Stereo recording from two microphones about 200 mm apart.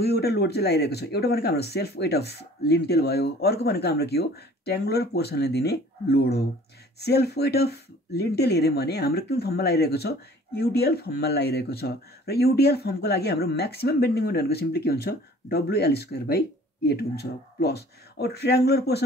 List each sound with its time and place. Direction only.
0.0 s speech: 55° left (ahead or behind)